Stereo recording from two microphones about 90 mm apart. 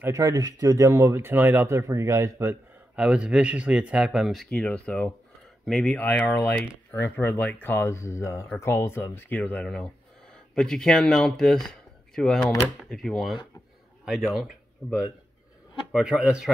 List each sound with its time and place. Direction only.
0.1 s speech: 40° right (ahead or behind)
3.0 s speech: 10° right (ahead or behind)
4.5 s speech: 15° left (ahead or behind)
5.7 s speech: 5° left (ahead or behind)
5.9 s speech: 15° left (ahead or behind); by 14.5 s 5° right (ahead or behind)
15.9 s speech: 10° right (ahead or behind)